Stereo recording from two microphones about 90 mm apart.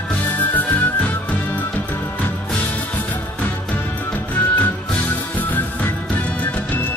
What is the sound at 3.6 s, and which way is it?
Music, 15° left (ahead or behind).